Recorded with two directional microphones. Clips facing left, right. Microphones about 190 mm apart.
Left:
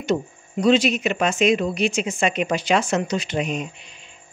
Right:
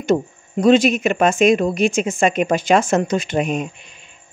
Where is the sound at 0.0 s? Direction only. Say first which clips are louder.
Right 5 dB; 50° right (ahead or behind).